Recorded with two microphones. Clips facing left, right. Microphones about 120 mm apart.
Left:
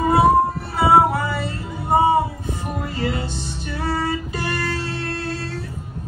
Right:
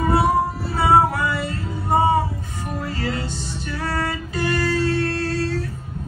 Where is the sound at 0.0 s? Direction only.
25° left (ahead or behind).